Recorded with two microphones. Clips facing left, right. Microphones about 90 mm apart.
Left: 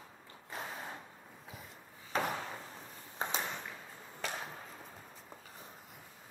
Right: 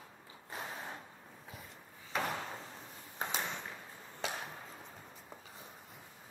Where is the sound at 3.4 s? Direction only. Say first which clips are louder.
Even; centre (ahead or behind).